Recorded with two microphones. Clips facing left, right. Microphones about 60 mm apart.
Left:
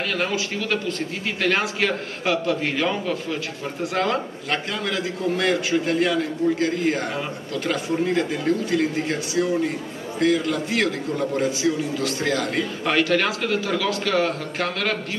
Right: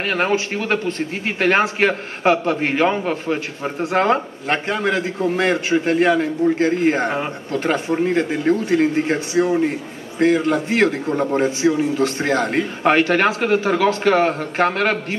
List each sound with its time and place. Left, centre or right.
0.0 s a man's voice: right